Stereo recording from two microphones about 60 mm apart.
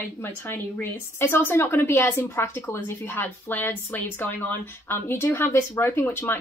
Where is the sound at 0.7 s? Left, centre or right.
Left.